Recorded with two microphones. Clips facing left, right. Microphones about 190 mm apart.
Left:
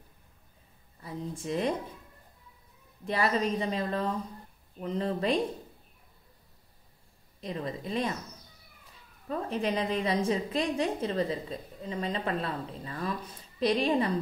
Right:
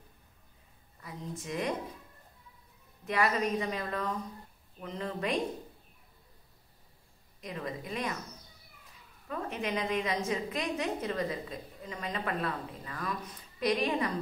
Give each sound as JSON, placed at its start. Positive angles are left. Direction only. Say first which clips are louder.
{"t": 1.0, "sound": "speech", "louder": "left 5 dB", "side_deg": 30}
{"t": 3.1, "sound": "a woman's voice", "louder": "left 1 dB", "side_deg": 30}
{"t": 7.3, "sound": "a woman's voice", "louder": "left 3 dB", "side_deg": 30}
{"t": 9.3, "sound": "a woman's voice", "louder": "left 4 dB", "side_deg": 35}